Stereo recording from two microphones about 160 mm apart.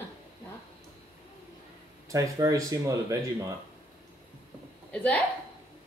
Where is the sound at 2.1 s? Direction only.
20° right (ahead or behind).